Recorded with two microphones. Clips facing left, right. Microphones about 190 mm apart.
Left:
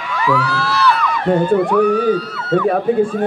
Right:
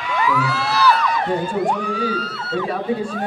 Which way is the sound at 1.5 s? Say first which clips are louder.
Left 8 dB; 60° left (ahead or behind).